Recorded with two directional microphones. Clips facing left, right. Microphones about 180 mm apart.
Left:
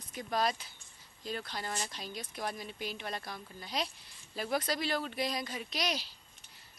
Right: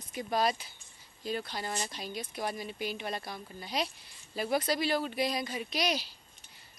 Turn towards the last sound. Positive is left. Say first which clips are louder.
# right 4 dB
turn(degrees=-5)  # may be behind; listen again after turning